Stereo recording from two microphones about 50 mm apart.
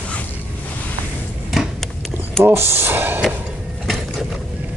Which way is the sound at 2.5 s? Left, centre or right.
Right.